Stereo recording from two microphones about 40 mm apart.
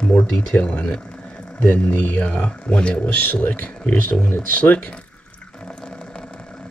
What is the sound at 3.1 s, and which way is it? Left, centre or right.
Speech, left.